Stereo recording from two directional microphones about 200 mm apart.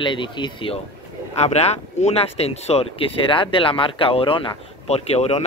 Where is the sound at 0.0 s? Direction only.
25° left (ahead or behind).